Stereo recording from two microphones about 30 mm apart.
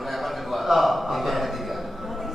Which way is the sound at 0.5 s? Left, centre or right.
Centre.